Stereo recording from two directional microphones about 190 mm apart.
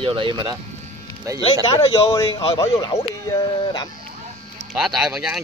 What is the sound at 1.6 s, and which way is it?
Speech, 25° left (ahead or behind).